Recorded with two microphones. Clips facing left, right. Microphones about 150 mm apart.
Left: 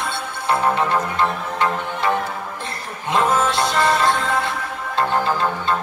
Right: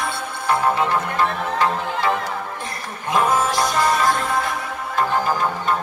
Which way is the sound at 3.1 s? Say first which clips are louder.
Even; 25° left (ahead or behind).